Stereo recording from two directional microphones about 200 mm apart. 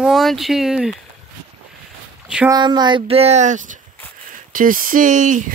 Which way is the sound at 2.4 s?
20° right (ahead or behind).